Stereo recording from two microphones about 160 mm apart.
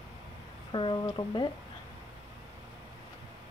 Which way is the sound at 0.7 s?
30° left (ahead or behind).